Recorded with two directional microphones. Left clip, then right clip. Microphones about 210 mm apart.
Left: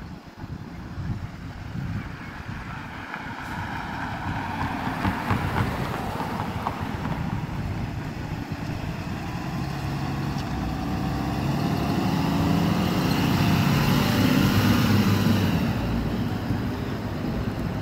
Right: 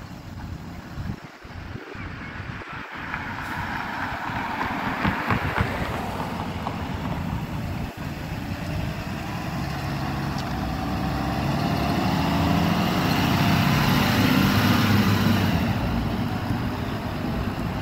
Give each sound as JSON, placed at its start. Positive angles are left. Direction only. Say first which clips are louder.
{"t": 3.1, "sound": "vehicle", "louder": "right 4 dB", "side_deg": 25}
{"t": 9.6, "sound": "vehicle", "louder": "right 2 dB", "side_deg": 10}
{"t": 10.2, "sound": "vehicle", "louder": "right 2 dB", "side_deg": 0}
{"t": 10.8, "sound": "vehicle", "louder": "right 2 dB", "side_deg": 15}